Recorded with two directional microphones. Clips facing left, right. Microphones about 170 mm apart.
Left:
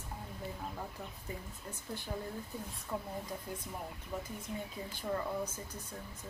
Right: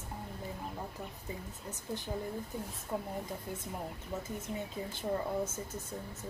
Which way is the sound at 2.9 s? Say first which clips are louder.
Right 3 dB; 15° right (ahead or behind).